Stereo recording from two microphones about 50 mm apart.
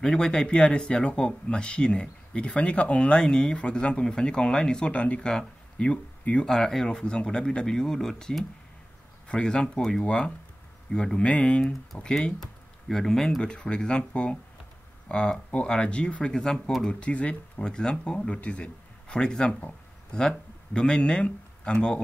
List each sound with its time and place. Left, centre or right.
0.0 s speech: centre
6.4 s speech: centre
12.0 s speech: centre
13.4 s speech: centre
17.0 s a man's voice: left